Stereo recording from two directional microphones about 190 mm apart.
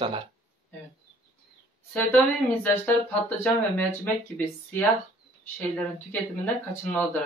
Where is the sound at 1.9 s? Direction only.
10° left (ahead or behind).